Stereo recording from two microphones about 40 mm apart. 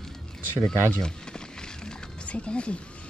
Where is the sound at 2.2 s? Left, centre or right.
Left.